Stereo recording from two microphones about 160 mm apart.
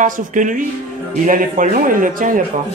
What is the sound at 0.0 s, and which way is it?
A man's voice, 55° right (ahead or behind).